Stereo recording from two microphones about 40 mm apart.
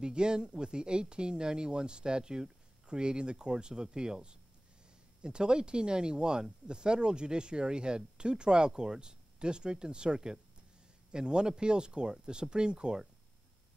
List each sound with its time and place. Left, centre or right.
0.0 s speech: right